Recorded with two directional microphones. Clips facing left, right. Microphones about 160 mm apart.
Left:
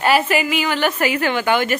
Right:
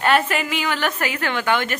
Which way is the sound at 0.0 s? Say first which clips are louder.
Left 2 dB; 5° left (ahead or behind).